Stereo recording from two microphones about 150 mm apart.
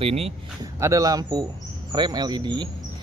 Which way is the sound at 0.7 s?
20° right (ahead or behind).